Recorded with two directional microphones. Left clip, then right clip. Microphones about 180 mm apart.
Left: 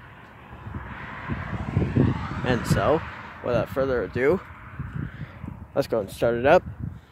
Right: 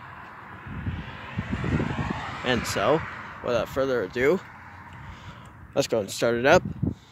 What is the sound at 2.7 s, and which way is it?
Speech, 5° left (ahead or behind).